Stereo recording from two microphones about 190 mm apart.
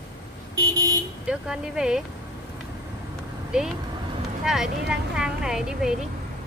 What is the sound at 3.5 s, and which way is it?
A woman's voice, 5° right (ahead or behind).